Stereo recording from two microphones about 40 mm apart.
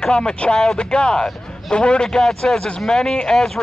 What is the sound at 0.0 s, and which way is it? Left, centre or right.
A man's voice, centre.